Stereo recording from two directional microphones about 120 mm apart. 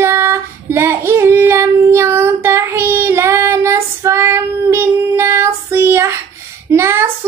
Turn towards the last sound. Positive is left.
turn(degrees=-25)  # may be behind; listen again after turning